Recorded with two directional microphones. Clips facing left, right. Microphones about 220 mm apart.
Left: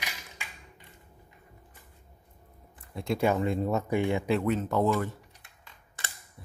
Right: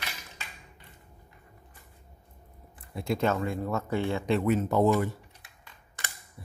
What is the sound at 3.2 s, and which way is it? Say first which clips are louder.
Speech: left 3 dB; 15° left (ahead or behind).